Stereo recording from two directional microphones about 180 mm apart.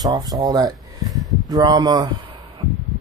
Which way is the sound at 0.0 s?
20° right (ahead or behind).